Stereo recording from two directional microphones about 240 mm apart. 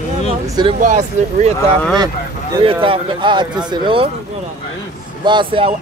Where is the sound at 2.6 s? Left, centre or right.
Right.